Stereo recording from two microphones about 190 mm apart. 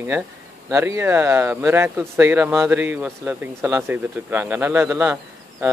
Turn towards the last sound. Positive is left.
turn(degrees=-10)  # may be behind; listen again after turning